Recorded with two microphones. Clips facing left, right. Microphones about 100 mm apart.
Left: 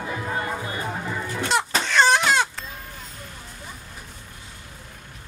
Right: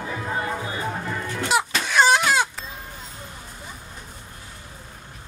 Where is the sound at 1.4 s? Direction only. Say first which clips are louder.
Right 1 dB; 5° right (ahead or behind).